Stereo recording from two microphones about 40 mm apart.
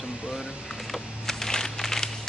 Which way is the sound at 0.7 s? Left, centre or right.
Centre.